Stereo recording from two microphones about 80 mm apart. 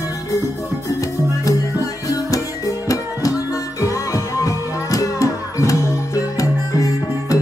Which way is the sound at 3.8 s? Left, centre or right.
Left.